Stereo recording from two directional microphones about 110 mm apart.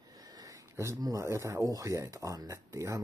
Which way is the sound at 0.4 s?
30° right (ahead or behind).